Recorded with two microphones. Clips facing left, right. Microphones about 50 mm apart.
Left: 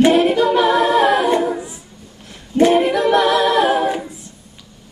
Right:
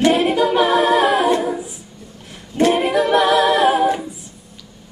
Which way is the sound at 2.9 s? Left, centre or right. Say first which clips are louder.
Even; centre.